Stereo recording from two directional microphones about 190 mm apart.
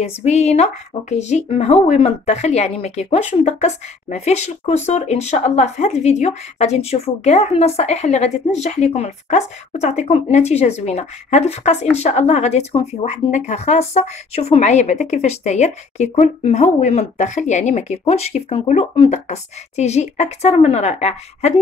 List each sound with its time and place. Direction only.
0.0 s speech: 35° left (ahead or behind)